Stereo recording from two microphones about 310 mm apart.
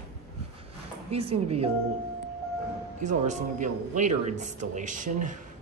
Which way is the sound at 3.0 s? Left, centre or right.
Right.